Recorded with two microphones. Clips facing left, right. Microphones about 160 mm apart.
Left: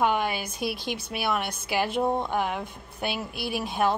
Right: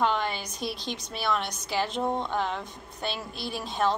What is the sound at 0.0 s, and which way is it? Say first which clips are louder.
A woman's voice: left 2 dB; 10° left (ahead or behind).